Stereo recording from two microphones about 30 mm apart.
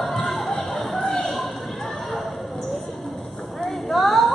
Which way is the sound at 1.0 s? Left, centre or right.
Centre.